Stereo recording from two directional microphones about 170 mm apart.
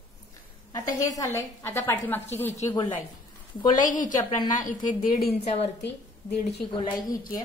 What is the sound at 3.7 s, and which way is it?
A woman's voice, 50° left (ahead or behind).